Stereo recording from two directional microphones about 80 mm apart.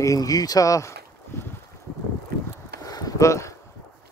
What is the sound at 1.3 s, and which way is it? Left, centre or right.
Boat, left.